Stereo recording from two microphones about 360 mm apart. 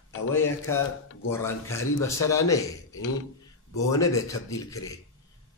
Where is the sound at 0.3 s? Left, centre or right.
Centre.